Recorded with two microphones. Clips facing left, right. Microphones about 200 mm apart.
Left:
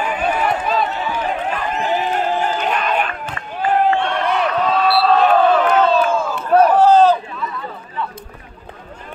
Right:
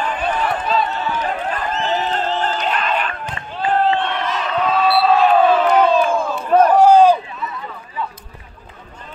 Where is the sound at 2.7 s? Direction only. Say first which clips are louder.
Left 2 dB; 45° left (ahead or behind).